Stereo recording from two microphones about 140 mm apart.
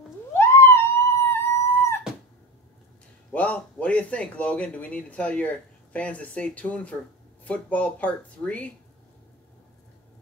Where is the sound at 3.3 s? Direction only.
10° left (ahead or behind).